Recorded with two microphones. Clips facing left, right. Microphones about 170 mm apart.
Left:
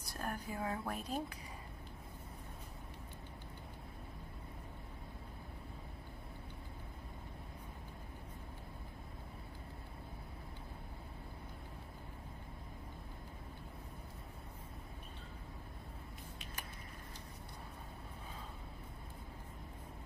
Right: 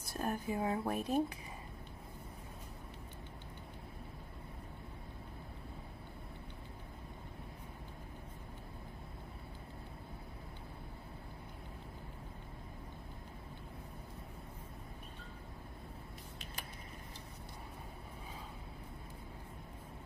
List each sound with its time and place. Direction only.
0.1 s a woman's voice: 25° right (ahead or behind)